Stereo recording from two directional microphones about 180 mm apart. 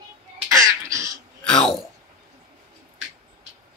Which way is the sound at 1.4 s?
5° left (ahead or behind).